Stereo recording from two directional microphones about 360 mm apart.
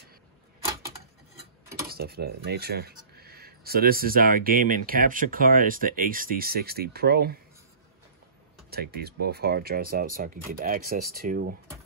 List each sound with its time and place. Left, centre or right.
1.9 s speech: right
8.6 s speech: right